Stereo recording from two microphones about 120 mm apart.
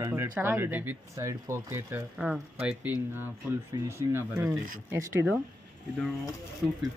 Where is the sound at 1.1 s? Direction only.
25° right (ahead or behind).